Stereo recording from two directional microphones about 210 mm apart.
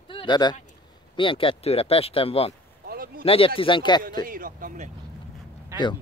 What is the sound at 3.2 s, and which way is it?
Speech, 25° left (ahead or behind).